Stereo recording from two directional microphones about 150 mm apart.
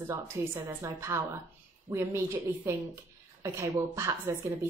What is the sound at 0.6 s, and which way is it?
A woman's voice, 20° right (ahead or behind).